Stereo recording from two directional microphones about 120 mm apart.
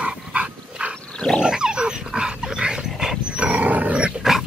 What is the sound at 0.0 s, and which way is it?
Dog, 10° right (ahead or behind).